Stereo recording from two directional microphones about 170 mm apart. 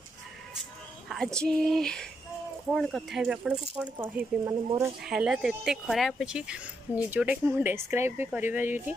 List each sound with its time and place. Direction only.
1.0 s speech: centre (ahead or behind); by 4.9 s 20° right (ahead or behind)
5.0 s speech: 5° right (ahead or behind)